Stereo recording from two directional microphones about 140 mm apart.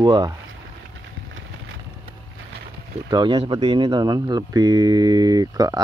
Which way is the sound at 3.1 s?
30° right (ahead or behind).